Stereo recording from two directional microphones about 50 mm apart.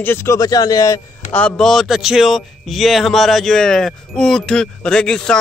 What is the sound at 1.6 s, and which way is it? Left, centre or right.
Speech, centre.